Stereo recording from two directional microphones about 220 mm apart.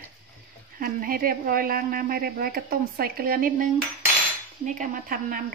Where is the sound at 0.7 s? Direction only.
40° right (ahead or behind).